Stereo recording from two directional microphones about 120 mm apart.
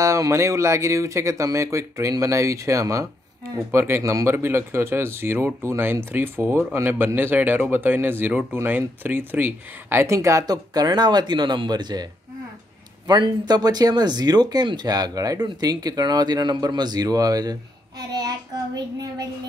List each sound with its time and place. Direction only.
0.0 s speech: 25° right (ahead or behind)